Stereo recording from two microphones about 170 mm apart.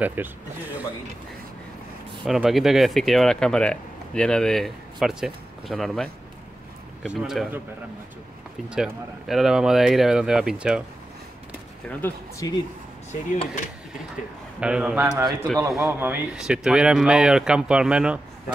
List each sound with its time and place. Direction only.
0.0 s speech: 10° right (ahead or behind)
2.2 s speech: centre (ahead or behind)
8.6 s speech: 5° right (ahead or behind)
11.9 s speech: 15° left (ahead or behind)
13.1 s speech: 45° left (ahead or behind)
14.6 s speech: 5° right (ahead or behind)